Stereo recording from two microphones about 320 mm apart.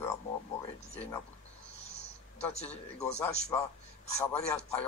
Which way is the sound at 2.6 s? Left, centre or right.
Centre.